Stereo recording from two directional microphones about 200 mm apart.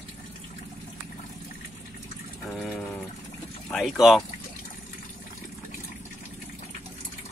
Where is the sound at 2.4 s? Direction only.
5° left (ahead or behind).